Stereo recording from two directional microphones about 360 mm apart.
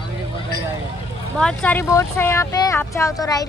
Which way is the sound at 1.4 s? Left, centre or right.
Centre.